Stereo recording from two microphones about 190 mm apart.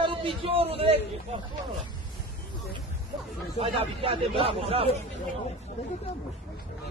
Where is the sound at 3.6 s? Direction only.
30° right (ahead or behind).